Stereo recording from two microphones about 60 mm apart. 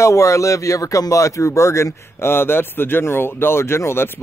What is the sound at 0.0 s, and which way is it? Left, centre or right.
Speech, left.